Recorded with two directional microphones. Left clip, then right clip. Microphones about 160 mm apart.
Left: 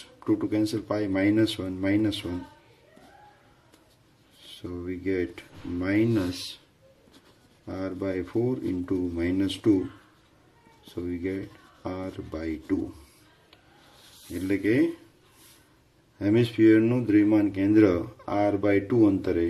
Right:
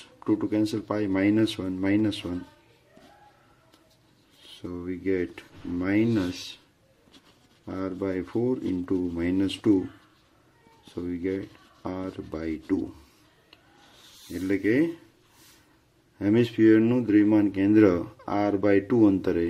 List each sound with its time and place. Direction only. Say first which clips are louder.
0.2 s speech: even; 30° right (ahead or behind)
4.4 s speech: even; 30° right (ahead or behind)
7.6 s speech: right 1 dB; 30° right (ahead or behind)
10.9 s speech: right 1 dB; 30° right (ahead or behind)
14.3 s speech: even; 25° right (ahead or behind)
16.2 s speech: even; 30° right (ahead or behind)